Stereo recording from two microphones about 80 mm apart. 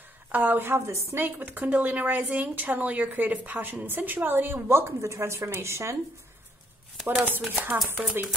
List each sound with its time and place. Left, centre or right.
0.3 s a woman's voice: right
7.2 s a woman's voice: centre